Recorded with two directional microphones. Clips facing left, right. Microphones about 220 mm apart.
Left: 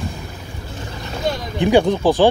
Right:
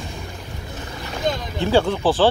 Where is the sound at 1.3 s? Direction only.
15° left (ahead or behind).